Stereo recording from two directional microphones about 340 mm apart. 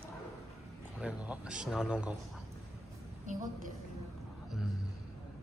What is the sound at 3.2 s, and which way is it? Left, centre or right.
Speech, right.